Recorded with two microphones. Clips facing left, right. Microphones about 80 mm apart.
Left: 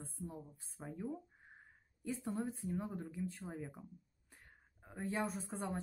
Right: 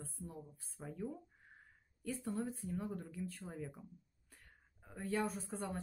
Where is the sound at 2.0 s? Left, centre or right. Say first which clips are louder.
Even; centre.